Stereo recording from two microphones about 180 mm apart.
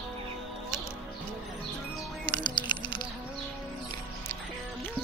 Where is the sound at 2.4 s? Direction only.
25° left (ahead or behind).